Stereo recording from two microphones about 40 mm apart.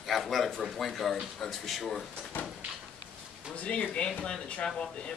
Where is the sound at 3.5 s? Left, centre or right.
Left.